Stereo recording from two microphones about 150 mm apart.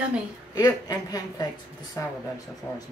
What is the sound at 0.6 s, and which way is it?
A woman's voice, 25° left (ahead or behind).